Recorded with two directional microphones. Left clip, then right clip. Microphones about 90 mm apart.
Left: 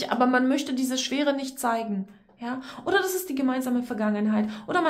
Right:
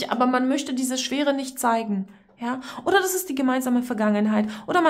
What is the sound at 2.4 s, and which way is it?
A woman's voice, 45° right (ahead or behind).